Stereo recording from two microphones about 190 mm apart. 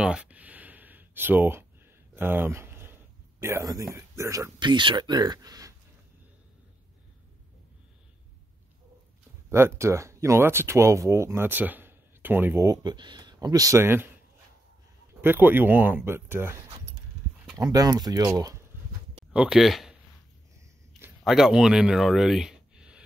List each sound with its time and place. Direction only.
0.0 s a sound: 5° right (ahead or behind)
4.2 s speech: 15° right (ahead or behind)
9.5 s speech: 15° right (ahead or behind)
15.2 s speech: 10° right (ahead or behind)
19.3 s speech: 5° right (ahead or behind)
21.2 s speech: centre (ahead or behind)